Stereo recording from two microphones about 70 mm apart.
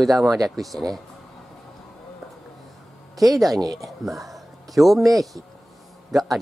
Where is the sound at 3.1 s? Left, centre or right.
Right.